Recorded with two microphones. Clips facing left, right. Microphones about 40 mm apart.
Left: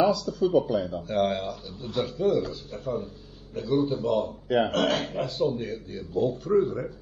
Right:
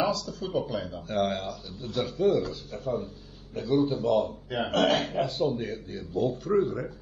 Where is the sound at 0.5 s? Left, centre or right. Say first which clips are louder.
Left 6 dB; left.